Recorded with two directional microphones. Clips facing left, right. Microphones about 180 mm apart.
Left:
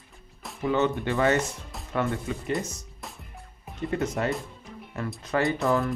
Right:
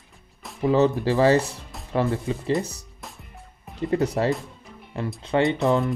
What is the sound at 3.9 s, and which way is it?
Speech, 35° right (ahead or behind).